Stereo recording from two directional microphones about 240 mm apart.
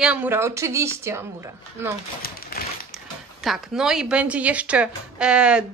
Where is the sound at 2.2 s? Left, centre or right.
Left.